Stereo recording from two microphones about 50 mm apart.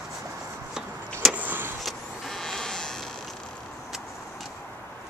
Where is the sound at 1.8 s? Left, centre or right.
Centre.